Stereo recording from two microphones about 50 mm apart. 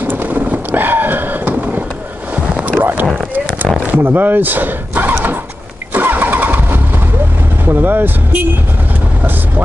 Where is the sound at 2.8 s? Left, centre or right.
Right.